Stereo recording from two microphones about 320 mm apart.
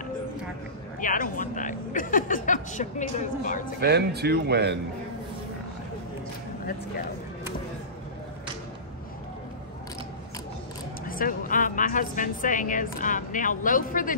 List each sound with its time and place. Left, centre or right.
1.0 s speech: left
3.8 s speech: right
11.1 s speech: left